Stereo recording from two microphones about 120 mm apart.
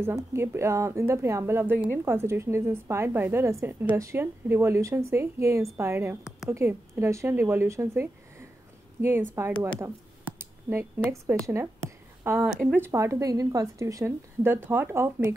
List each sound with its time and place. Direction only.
0.0 s a woman's voice: 20° right (ahead or behind)